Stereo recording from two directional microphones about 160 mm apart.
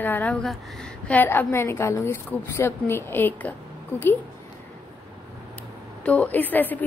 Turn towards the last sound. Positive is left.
turn(degrees=10)  # may be behind; listen again after turning